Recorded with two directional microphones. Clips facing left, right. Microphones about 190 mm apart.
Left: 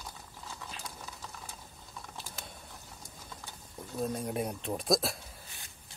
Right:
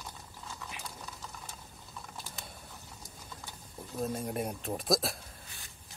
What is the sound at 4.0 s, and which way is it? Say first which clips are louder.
Speech: left 1 dB; centre (ahead or behind).